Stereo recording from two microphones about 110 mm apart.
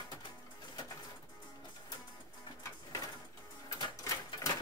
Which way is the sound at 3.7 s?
35° left (ahead or behind).